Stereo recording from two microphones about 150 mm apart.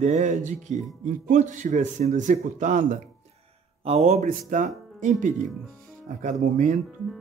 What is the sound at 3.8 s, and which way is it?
Speech, 45° right (ahead or behind).